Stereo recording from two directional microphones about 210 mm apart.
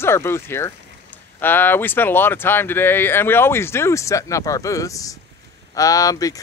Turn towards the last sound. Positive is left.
turn(degrees=15)  # may be behind; listen again after turning